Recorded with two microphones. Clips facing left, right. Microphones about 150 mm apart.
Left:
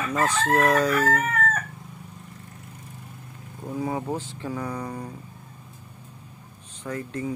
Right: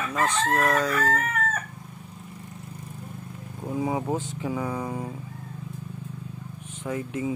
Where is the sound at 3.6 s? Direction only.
10° right (ahead or behind).